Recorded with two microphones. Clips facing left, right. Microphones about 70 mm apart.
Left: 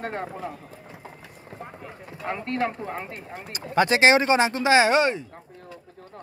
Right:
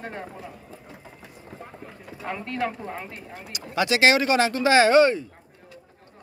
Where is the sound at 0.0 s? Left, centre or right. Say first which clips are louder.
Left 5 dB; left.